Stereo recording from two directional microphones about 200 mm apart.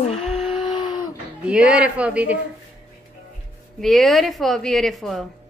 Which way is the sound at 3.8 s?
Centre (ahead or behind).